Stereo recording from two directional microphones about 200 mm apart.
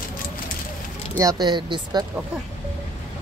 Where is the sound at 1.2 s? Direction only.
20° right (ahead or behind).